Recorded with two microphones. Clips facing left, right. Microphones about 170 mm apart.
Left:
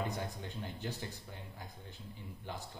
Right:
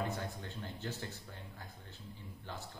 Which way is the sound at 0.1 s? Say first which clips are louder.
Left 1 dB; 15° left (ahead or behind).